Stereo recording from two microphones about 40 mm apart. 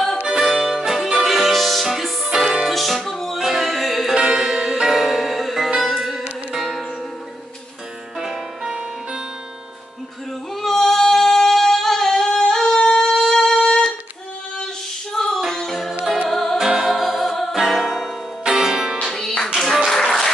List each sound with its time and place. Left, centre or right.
0.4 s music: centre
4.1 s music: centre
8.2 s music: centre
10.5 s female singing: centre
13.1 s a sound: centre
13.5 s music: centre
15.1 s music: centre
16.5 s music: centre
18.4 s music: centre
19.0 s music: centre
19.9 s applause: centre